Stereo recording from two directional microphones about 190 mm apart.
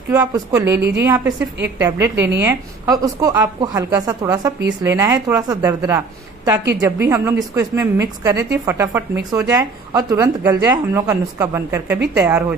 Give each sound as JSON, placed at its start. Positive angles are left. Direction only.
{"t": 0.1, "sound": "a woman's voice", "side_deg": -15}